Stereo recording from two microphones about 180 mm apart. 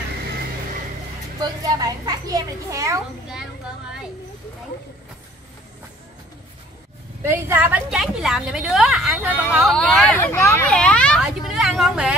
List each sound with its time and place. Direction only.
1.4 s a child's voice: 20° right (ahead or behind)
7.2 s a woman's voice: 10° right (ahead or behind)
9.8 s speech: 5° left (ahead or behind)